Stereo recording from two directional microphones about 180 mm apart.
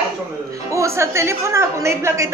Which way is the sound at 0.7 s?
15° right (ahead or behind).